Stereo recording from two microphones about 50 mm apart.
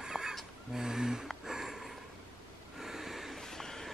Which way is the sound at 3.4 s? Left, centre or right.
Centre.